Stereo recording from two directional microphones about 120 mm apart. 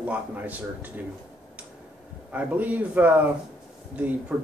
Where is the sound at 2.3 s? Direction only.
10° right (ahead or behind).